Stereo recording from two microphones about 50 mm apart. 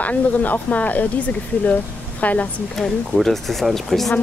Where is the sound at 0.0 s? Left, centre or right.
Left.